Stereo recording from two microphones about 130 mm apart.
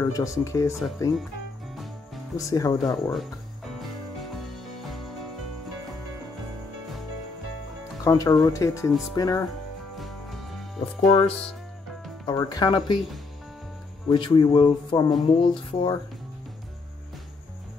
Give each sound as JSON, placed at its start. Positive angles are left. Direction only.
{"t": 0.0, "sound": "speech", "side_deg": 25}
{"t": 2.3, "sound": "speech", "side_deg": 25}
{"t": 2.9, "sound": "cricket", "side_deg": 0}
{"t": 8.0, "sound": "speech", "side_deg": 25}
{"t": 11.0, "sound": "speech", "side_deg": 55}
{"t": 12.3, "sound": "a man's voice", "side_deg": 30}
{"t": 14.0, "sound": "a man's voice", "side_deg": 40}